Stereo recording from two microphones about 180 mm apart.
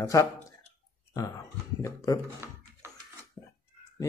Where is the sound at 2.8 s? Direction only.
15° right (ahead or behind).